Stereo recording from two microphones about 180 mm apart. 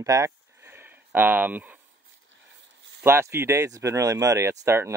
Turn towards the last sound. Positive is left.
turn(degrees=-15)  # may be behind; listen again after turning